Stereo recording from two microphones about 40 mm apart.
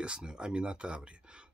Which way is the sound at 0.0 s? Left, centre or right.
Right.